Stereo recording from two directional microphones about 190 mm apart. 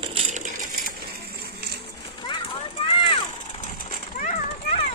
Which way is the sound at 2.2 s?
25° left (ahead or behind).